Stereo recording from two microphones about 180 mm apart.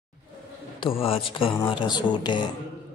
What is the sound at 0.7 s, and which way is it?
Speech, 30° left (ahead or behind).